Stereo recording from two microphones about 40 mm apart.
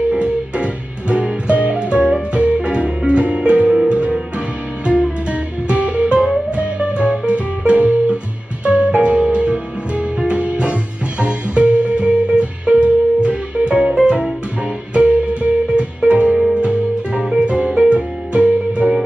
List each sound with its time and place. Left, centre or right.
0.2 s music: right
15.0 s music: right